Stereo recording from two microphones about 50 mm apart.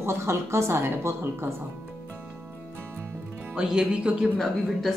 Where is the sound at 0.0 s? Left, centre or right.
Right.